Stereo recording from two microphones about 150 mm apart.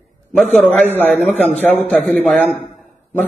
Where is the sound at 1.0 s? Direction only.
50° right (ahead or behind).